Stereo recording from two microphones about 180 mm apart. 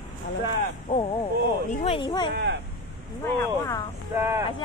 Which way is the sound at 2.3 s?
70° right (ahead or behind).